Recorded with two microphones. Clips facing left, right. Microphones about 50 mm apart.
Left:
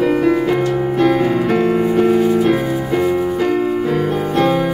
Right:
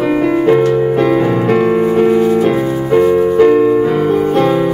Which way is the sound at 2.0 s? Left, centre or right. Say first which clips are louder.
Right 2 dB; centre.